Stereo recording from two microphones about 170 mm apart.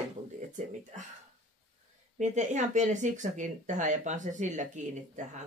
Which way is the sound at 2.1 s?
45° right (ahead or behind).